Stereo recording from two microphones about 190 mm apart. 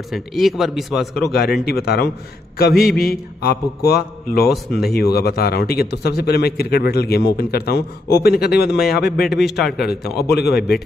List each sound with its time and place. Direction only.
0.1 s a man's voice: centre (ahead or behind)
1.6 s a man's voice: 55° left (ahead or behind)
9.6 s a man's voice: centre (ahead or behind)
9.8 s a man's voice: 55° left (ahead or behind)